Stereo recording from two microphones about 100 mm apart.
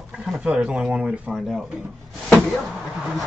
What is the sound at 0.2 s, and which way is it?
Speech, 10° right (ahead or behind).